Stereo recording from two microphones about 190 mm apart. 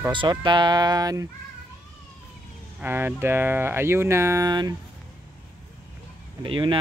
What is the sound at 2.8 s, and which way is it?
Speech, 10° right (ahead or behind).